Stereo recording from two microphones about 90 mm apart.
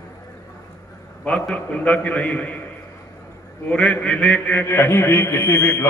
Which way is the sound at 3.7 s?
15° left (ahead or behind).